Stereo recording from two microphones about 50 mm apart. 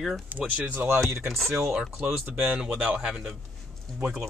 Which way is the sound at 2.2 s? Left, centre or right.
Centre.